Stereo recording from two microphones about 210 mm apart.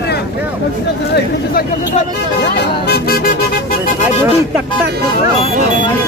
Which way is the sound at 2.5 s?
50° left (ahead or behind).